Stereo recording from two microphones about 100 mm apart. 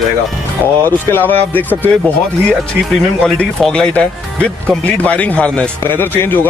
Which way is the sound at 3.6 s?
10° left (ahead or behind).